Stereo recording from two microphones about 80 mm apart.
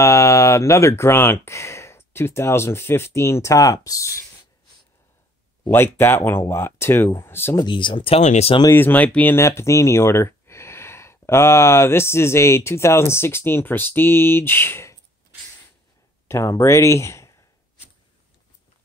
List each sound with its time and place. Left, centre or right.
0.0 s speech: left
5.7 s speech: left
7.6 s speech: left
8.7 s speech: left
9.4 s speech: left
16.3 s speech: left